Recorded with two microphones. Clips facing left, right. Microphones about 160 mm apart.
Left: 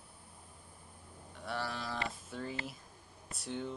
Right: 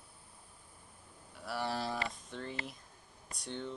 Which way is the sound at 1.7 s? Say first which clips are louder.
Right 4 dB; 35° right (ahead or behind).